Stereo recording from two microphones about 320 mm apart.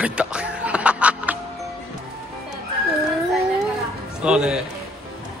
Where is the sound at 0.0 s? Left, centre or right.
Centre.